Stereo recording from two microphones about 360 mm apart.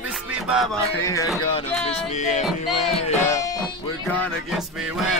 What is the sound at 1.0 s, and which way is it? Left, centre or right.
Speech, centre.